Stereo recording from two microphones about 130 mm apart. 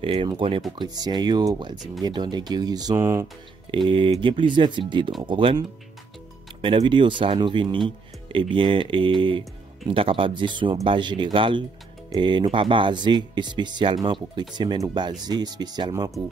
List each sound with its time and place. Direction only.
0.0 s speech: 45° right (ahead or behind)
0.7 s speech: 30° right (ahead or behind)
3.7 s speech: 40° right (ahead or behind)